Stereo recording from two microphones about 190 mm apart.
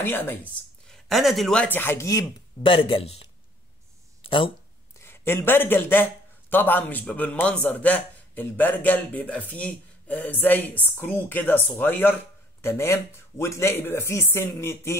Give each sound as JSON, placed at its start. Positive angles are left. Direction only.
{"t": 0.0, "sound": "a man's voice", "side_deg": 10}
{"t": 4.2, "sound": "a sound", "side_deg": 25}
{"t": 5.0, "sound": "a man's voice", "side_deg": 10}